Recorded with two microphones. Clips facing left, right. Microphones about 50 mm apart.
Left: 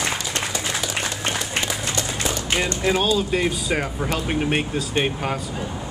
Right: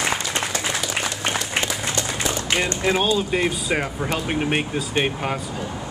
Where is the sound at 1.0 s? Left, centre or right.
Centre.